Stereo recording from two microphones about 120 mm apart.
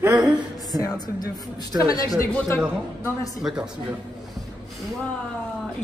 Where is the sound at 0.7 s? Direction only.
30° left (ahead or behind).